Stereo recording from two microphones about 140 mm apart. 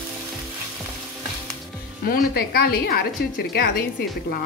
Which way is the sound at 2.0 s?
90° left.